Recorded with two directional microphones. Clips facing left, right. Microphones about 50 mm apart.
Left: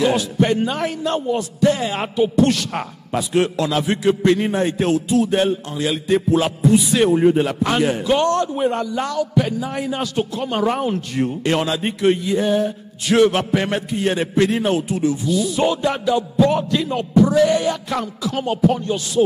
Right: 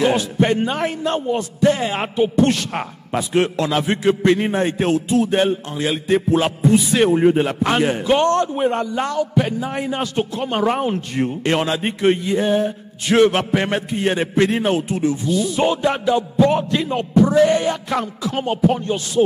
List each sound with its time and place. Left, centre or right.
0.0 s a man's voice: right